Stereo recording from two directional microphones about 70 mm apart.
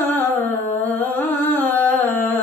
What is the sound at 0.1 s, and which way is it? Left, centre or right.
Humming, left.